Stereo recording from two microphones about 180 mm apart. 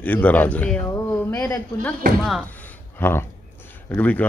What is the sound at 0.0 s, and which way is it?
Speech, 10° left (ahead or behind).